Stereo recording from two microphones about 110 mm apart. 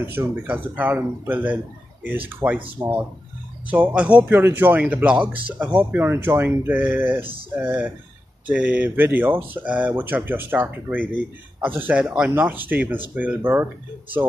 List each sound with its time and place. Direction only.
0.0 s speech: 20° right (ahead or behind)